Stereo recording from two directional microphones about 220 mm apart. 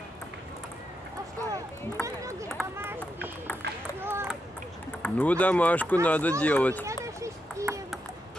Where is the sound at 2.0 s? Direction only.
10° left (ahead or behind).